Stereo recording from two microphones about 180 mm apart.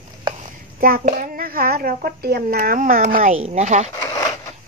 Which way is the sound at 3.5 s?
40° right (ahead or behind).